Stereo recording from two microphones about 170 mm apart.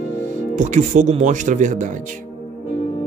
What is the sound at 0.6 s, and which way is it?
Speech, 45° right (ahead or behind).